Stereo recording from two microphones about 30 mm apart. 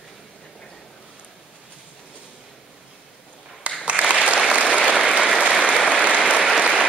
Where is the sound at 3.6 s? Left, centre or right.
Right.